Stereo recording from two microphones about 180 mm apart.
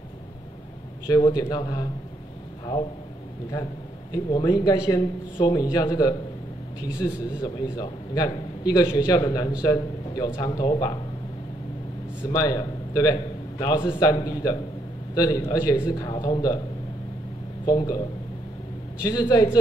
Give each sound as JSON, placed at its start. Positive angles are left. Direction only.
{"t": 1.0, "sound": "a man's voice", "side_deg": 20}
{"t": 4.1, "sound": "a man's voice", "side_deg": 25}
{"t": 12.3, "sound": "a man's voice", "side_deg": 20}
{"t": 17.6, "sound": "a man's voice", "side_deg": 20}
{"t": 19.0, "sound": "a man's voice", "side_deg": 20}